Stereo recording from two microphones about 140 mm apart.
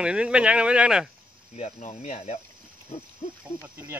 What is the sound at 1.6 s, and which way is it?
Speech, 55° left (ahead or behind).